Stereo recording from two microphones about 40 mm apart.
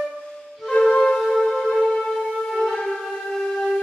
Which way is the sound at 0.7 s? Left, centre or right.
Centre.